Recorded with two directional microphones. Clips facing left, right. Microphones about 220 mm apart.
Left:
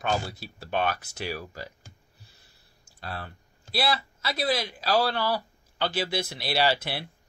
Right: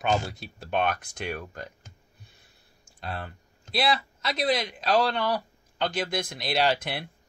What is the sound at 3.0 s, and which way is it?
Speech, centre (ahead or behind).